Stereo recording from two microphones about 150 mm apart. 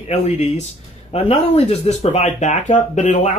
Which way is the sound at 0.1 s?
45° left (ahead or behind).